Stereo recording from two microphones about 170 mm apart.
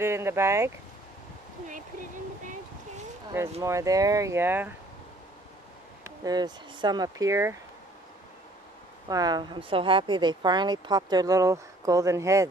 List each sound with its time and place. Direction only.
0.0 s speech: 15° right (ahead or behind)
3.6 s speech: 20° right (ahead or behind)
6.0 s a woman's voice: 20° right (ahead or behind)
9.1 s a woman's voice: 25° right (ahead or behind)